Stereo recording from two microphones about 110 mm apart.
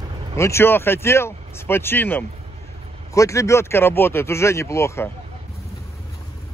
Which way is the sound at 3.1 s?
30° left (ahead or behind).